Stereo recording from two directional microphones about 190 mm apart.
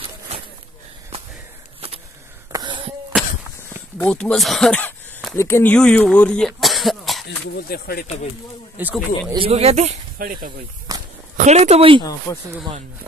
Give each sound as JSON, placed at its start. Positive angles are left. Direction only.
{"t": 2.5, "sound": "a sound", "side_deg": -25}
{"t": 4.1, "sound": "speech", "side_deg": 5}
{"t": 7.2, "sound": "speech", "side_deg": 55}
{"t": 8.7, "sound": "speech", "side_deg": -10}
{"t": 9.3, "sound": "speech", "side_deg": -30}
{"t": 10.1, "sound": "speech", "side_deg": -50}
{"t": 11.3, "sound": "speech", "side_deg": -40}
{"t": 12.0, "sound": "speech", "side_deg": 20}